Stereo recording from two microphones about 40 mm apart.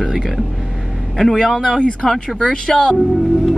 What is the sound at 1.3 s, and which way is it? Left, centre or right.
Speech, centre.